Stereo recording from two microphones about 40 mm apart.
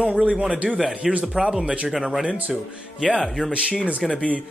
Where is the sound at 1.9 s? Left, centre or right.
Centre.